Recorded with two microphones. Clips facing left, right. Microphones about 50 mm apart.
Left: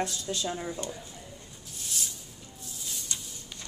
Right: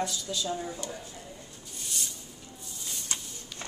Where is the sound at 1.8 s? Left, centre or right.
Centre.